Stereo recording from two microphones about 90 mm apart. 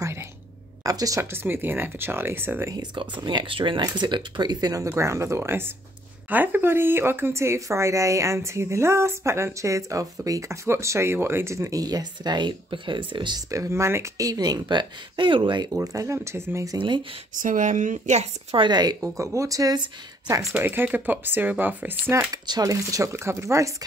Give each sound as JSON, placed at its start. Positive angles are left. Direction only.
{"t": 0.8, "sound": "speech", "side_deg": -40}
{"t": 1.3, "sound": "speech", "side_deg": -25}
{"t": 2.7, "sound": "speech", "side_deg": -55}
{"t": 3.8, "sound": "speech", "side_deg": -55}
{"t": 4.8, "sound": "speech", "side_deg": -30}
{"t": 13.5, "sound": "speech", "side_deg": -35}
{"t": 14.2, "sound": "speech", "side_deg": -45}
{"t": 15.7, "sound": "speech", "side_deg": -40}
{"t": 16.7, "sound": "speech", "side_deg": -65}
{"t": 18.6, "sound": "speech", "side_deg": -50}
{"t": 19.1, "sound": "speech", "side_deg": -35}
{"t": 20.5, "sound": "speech", "side_deg": -20}
{"t": 22.3, "sound": "speech", "side_deg": -40}